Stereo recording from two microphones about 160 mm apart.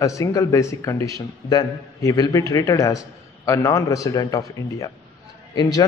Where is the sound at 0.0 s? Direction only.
20° left (ahead or behind).